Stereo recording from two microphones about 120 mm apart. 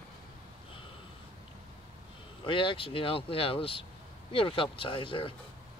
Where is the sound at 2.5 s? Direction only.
45° left (ahead or behind).